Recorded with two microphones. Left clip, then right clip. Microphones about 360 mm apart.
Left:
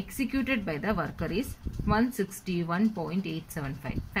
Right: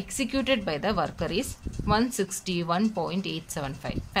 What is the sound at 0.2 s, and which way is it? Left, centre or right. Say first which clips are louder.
A woman's voice: right 4 dB; centre.